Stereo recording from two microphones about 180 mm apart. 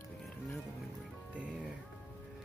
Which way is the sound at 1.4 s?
5° right (ahead or behind).